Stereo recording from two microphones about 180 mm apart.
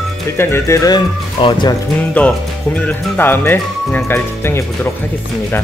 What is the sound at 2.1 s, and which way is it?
Speech, 5° left (ahead or behind).